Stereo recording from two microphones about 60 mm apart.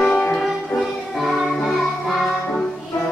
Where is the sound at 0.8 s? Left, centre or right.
Centre.